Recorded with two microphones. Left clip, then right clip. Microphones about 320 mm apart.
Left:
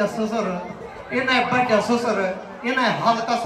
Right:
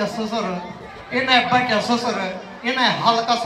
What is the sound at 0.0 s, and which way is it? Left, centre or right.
A man's voice, centre.